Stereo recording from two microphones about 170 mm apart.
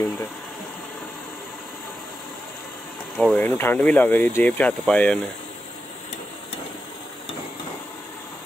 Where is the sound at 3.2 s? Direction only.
5° left (ahead or behind).